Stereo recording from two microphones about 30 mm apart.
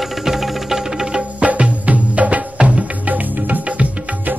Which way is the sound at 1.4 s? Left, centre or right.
Right.